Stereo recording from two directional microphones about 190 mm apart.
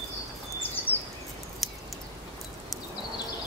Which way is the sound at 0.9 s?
30° left (ahead or behind).